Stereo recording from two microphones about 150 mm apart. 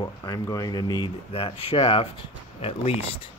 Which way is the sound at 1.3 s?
40° left (ahead or behind).